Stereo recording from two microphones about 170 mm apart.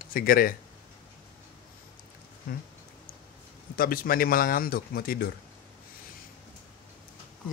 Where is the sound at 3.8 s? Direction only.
55° left (ahead or behind).